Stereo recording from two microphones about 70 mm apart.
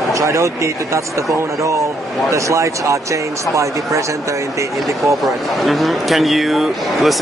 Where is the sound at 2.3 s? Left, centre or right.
Right.